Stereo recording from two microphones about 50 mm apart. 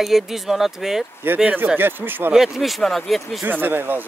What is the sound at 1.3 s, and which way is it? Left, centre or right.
Speech, right.